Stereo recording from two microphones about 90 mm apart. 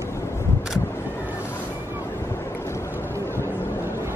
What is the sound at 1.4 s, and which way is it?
Ocean, 25° left (ahead or behind).